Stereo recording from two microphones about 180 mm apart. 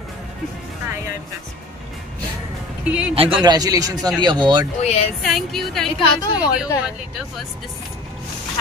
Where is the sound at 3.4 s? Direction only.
20° right (ahead or behind).